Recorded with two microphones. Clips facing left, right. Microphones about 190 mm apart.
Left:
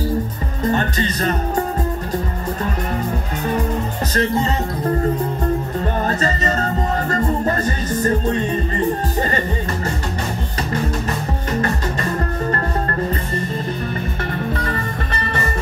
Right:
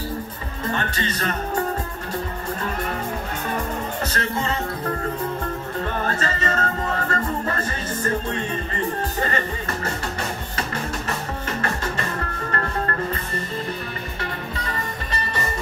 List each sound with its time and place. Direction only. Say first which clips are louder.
0.7 s music: left 7 dB; 40° left (ahead or behind)
4.1 s music: left 10 dB; 35° left (ahead or behind)
6.0 s music: left 4 dB; 35° left (ahead or behind)
14.5 s music: left 7 dB; 50° left (ahead or behind)